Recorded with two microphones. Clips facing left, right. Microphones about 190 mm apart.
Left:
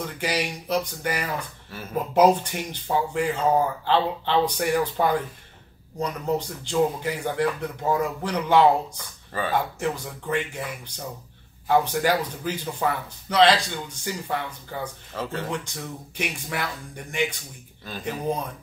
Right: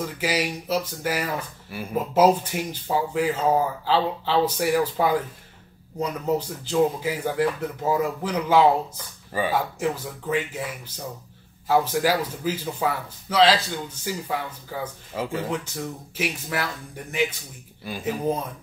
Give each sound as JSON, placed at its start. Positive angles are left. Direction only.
{"t": 0.0, "sound": "a man's voice", "side_deg": -5}